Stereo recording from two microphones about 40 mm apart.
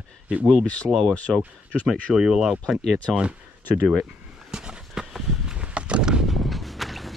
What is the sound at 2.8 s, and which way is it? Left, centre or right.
Speech, centre.